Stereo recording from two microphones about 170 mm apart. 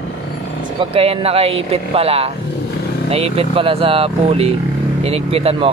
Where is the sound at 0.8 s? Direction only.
35° right (ahead or behind).